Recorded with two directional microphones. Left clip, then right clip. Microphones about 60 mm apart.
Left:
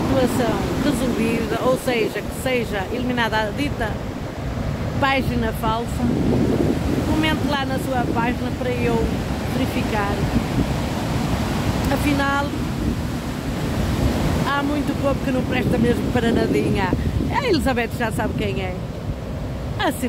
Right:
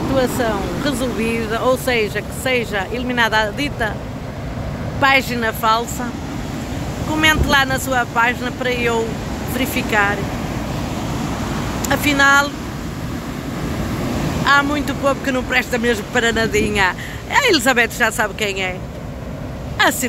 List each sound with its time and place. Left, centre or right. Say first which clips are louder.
1.7 s speech: right 3 dB; centre
5.0 s speech: right 6 dB; centre
5.6 s speech: right 8 dB; left
7.2 s speech: right 11 dB; centre
9.6 s speech: right 7 dB; centre
11.9 s speech: right 9 dB; centre
14.4 s speech: right 10 dB; left
17.3 s speech: right 7 dB; centre
19.8 s speech: right 7 dB; left